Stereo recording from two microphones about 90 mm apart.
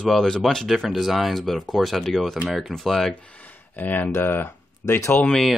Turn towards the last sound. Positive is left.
turn(degrees=5)  # may be behind; listen again after turning